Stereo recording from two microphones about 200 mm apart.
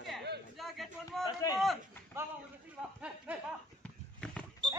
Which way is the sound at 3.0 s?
5° right (ahead or behind).